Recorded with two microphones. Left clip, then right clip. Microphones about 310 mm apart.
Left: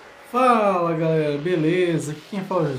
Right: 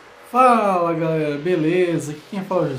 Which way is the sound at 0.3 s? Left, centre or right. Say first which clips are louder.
Right 3 dB; centre.